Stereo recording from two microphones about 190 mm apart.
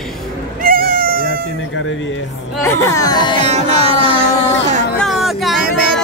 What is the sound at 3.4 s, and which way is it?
Music, 35° right (ahead or behind).